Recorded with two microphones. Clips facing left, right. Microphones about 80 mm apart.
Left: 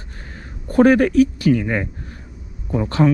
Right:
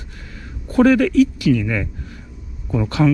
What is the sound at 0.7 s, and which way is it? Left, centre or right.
Speech, left.